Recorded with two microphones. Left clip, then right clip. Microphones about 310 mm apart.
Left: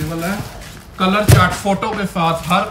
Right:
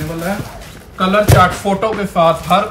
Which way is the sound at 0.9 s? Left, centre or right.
Centre.